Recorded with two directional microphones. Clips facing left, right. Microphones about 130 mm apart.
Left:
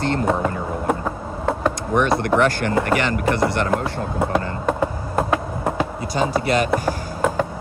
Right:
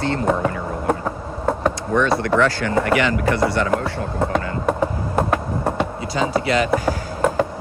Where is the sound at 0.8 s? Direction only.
Centre (ahead or behind).